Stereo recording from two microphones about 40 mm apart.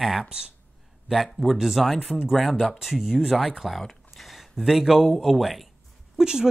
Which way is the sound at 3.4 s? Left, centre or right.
Centre.